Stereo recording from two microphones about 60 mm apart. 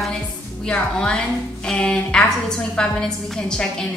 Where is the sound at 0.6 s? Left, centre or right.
Centre.